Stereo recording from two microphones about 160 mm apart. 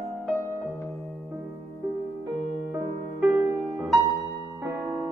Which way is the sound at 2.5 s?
20° right (ahead or behind).